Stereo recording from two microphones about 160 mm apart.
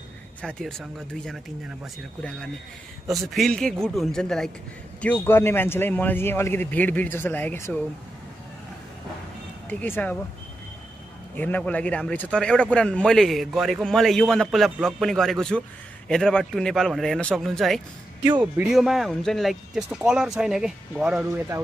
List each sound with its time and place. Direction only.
0.4 s a man's voice: 5° left (ahead or behind)
9.7 s a man's voice: 10° left (ahead or behind)
11.3 s a man's voice: 10° left (ahead or behind); by 21.3 s 5° right (ahead or behind)